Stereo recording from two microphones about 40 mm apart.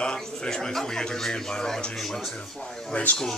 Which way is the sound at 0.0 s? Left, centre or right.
Centre.